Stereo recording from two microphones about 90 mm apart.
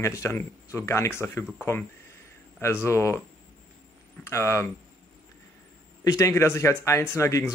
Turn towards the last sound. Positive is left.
turn(degrees=35)  # may be behind; listen again after turning